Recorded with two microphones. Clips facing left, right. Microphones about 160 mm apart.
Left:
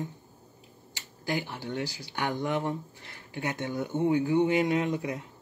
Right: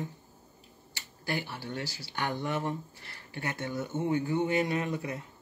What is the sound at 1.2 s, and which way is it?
Speech, 15° left (ahead or behind).